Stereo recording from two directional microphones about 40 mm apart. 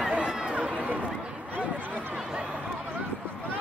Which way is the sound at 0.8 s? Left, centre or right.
Right.